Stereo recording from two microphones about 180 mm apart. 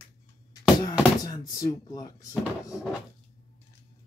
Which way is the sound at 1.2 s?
20° left (ahead or behind).